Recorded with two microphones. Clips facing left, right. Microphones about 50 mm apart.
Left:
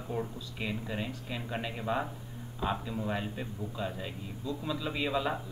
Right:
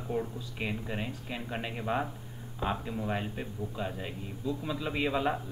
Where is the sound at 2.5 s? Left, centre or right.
Right.